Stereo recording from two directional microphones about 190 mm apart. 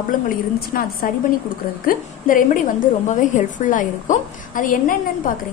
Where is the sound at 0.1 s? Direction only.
50° left (ahead or behind).